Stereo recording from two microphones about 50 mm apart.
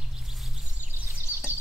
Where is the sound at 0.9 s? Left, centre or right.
Right.